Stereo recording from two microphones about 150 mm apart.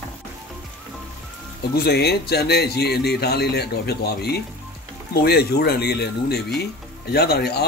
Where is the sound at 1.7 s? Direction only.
90° left.